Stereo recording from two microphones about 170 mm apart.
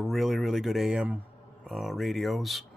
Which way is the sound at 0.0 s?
Centre (ahead or behind).